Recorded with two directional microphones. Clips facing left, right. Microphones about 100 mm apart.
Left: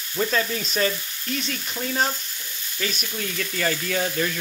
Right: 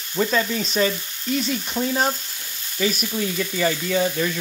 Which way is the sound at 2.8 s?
10° right (ahead or behind).